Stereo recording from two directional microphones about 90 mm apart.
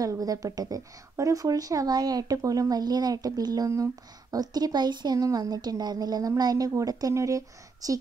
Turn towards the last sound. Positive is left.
turn(degrees=-40)  # may be behind; listen again after turning